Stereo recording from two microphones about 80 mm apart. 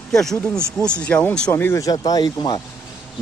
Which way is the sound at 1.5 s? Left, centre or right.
Left.